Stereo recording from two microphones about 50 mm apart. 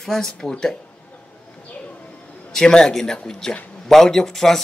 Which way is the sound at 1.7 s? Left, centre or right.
Left.